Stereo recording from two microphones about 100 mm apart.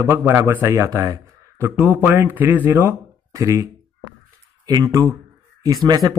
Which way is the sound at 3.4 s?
35° right (ahead or behind).